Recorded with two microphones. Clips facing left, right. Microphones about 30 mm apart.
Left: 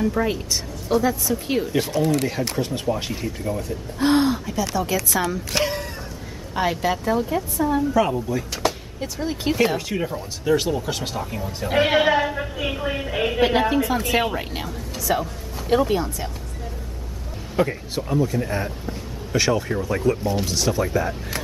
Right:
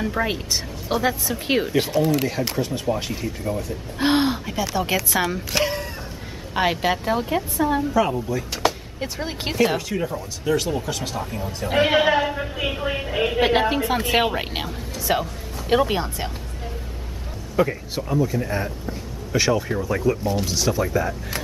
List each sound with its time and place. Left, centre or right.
0.0 s a woman's voice: right
2.0 s a man's voice: centre
2.6 s speech: centre
3.0 s a man's voice: centre
4.0 s speech: right
5.5 s a sound: centre
6.5 s a woman's voice: right
7.9 s a man's voice: centre
9.0 s a woman's voice: right
9.8 s speech: centre
11.1 s a man's voice: centre
13.4 s a woman's voice: centre
13.7 s a woman's voice: right
17.6 s a man's voice: centre